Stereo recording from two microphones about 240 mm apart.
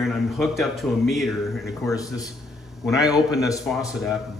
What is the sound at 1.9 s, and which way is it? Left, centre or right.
Speech, centre.